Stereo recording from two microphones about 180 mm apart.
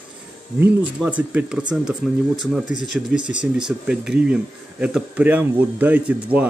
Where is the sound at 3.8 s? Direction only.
5° right (ahead or behind).